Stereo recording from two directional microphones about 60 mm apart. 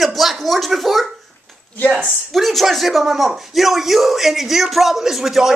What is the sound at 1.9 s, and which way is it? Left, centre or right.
Speech, centre.